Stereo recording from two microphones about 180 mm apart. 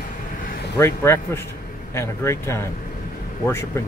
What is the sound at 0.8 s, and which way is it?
Speech, 15° left (ahead or behind).